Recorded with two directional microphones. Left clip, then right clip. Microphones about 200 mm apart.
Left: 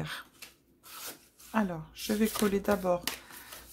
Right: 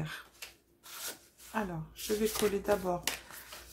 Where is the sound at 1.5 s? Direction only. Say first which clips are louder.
Left 4 dB; 50° left (ahead or behind).